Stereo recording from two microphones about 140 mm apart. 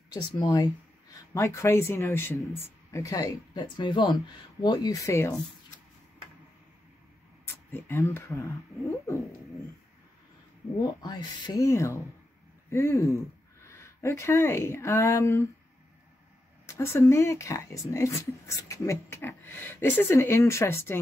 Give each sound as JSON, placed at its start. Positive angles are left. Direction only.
{"t": 0.1, "sound": "speech", "side_deg": 25}
{"t": 7.4, "sound": "speech", "side_deg": 15}
{"t": 10.8, "sound": "speech", "side_deg": 30}
{"t": 16.6, "sound": "speech", "side_deg": 20}